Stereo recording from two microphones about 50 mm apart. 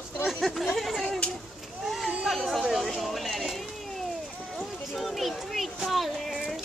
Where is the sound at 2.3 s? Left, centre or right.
Centre.